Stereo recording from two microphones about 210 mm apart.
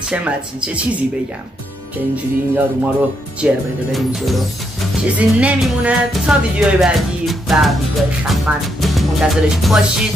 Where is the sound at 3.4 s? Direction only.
Centre (ahead or behind).